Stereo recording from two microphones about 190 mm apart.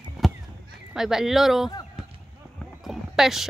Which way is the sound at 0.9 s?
Centre (ahead or behind).